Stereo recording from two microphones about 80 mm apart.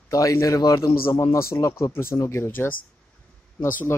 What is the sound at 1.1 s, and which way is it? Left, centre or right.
Speech, left.